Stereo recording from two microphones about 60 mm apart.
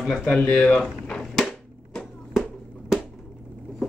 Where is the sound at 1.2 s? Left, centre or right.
Centre.